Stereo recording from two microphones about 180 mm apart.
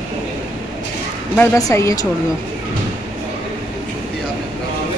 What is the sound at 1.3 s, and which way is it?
Speech, 15° left (ahead or behind).